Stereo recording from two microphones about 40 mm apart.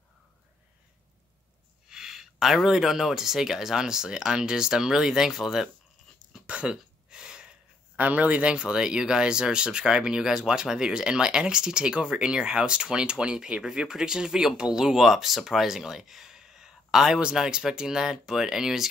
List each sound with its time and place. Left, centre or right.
1.9 s speech: centre
6.4 s a sound: right
8.0 s speech: right
13.6 s speech: centre